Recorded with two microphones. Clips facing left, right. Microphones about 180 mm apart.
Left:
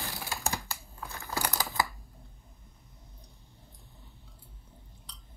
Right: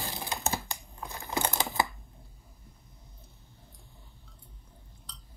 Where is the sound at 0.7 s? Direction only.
15° right (ahead or behind).